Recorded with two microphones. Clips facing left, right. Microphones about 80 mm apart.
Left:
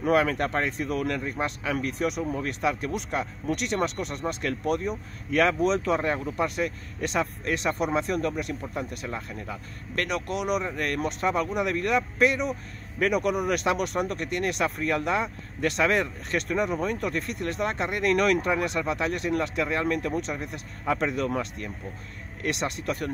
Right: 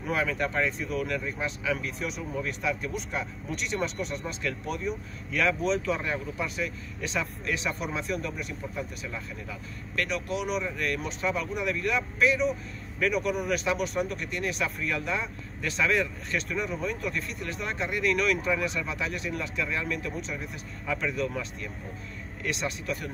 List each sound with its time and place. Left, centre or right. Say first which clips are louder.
0.0 s speech: left 6 dB; left